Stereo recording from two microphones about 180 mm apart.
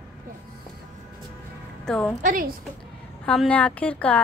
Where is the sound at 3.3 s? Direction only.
5° left (ahead or behind).